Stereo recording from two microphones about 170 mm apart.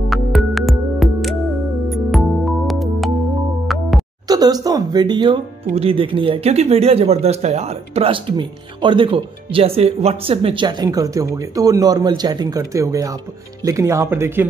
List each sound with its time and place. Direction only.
0.1 s music: centre (ahead or behind)
4.3 s speech: 25° right (ahead or behind)